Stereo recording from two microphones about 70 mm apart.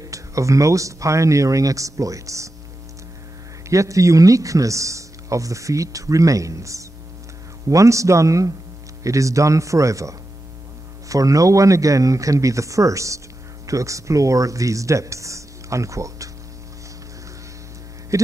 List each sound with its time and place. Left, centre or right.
0.0 s speech: right
3.6 s speech: right
18.1 s speech: right